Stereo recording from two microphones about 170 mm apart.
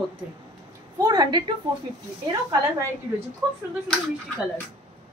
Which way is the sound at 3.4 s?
Centre (ahead or behind).